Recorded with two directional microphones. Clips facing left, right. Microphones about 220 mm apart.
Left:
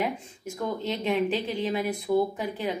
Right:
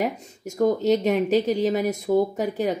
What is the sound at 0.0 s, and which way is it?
Speech, 40° right (ahead or behind).